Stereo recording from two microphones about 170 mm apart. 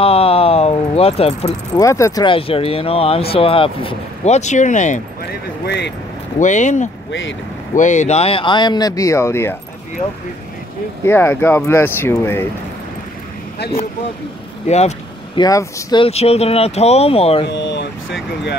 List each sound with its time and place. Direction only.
0.0 s a sound: 35° left (ahead or behind)
1.8 s speech: 15° left (ahead or behind)
2.2 s speech: 35° left (ahead or behind)
5.7 s speech: 90° left
6.4 s speech: 45° left (ahead or behind)
7.1 s speech: 90° left
7.7 s speech: 45° left (ahead or behind); by 9.6 s 15° left (ahead or behind)
11.1 s speech: 15° left (ahead or behind)
14.7 s speech: 40° left (ahead or behind)
15.3 s speech: 25° left (ahead or behind)
16.1 s speech: 35° left (ahead or behind)
17.5 s speech: 90° left